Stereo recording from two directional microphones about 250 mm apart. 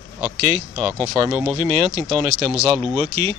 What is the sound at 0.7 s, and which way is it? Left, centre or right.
Speech, centre.